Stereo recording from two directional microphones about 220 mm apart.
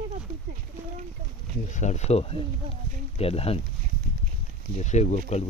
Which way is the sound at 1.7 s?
30° left (ahead or behind).